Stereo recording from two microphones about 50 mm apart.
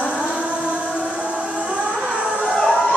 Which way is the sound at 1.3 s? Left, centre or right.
Right.